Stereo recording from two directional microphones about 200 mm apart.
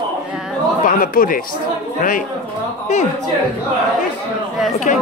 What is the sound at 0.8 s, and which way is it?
Speech, 45° left (ahead or behind).